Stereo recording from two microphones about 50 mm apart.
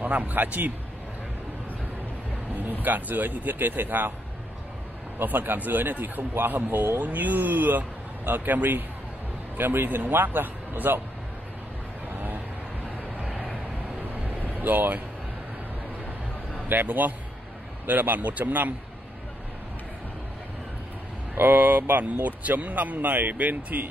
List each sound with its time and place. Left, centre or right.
0.0 s speech: right
2.8 s speech: right
5.2 s a man's voice: right
14.4 s vehicle: right
16.6 s speech: right
21.4 s speech: right